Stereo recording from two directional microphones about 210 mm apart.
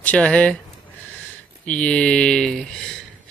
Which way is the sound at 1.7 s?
5° left (ahead or behind).